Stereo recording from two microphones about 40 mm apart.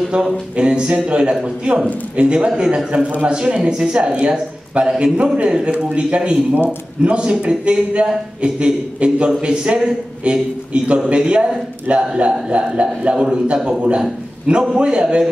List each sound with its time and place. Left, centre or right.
0.6 s speech: right